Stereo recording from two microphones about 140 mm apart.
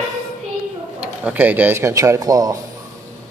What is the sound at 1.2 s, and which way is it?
Speech, 10° right (ahead or behind).